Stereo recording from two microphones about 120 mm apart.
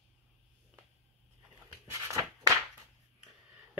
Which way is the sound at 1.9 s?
25° right (ahead or behind).